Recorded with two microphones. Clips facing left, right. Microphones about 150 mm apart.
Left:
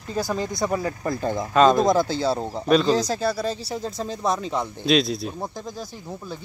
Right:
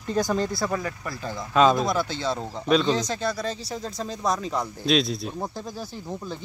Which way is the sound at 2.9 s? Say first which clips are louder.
Left 4 dB; 35° left (ahead or behind).